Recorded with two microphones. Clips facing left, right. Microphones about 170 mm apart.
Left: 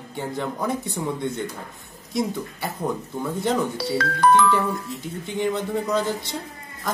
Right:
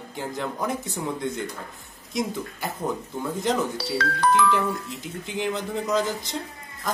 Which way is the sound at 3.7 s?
50° left (ahead or behind).